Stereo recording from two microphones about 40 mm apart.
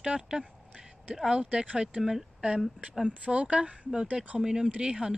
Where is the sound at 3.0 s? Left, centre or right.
Right.